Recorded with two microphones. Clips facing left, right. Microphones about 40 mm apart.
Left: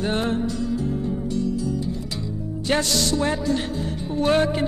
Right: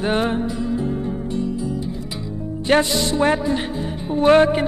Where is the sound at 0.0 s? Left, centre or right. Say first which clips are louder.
Right 3 dB; right.